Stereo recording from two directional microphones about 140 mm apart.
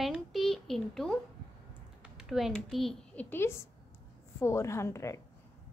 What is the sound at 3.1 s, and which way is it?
A woman's voice, 15° left (ahead or behind).